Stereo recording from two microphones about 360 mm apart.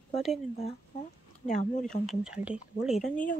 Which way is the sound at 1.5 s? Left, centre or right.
Centre.